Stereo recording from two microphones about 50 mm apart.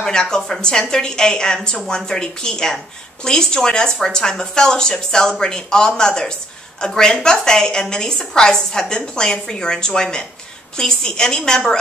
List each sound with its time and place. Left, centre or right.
0.0 s speech: centre